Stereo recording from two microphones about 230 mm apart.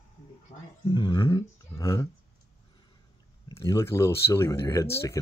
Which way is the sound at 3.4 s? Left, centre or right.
Centre.